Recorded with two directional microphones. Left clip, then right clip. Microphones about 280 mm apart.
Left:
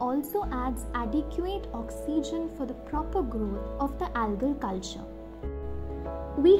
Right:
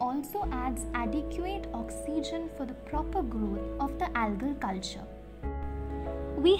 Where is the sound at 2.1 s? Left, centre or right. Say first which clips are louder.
Left 4 dB; centre.